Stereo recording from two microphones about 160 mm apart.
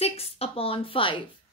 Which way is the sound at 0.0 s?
40° left (ahead or behind).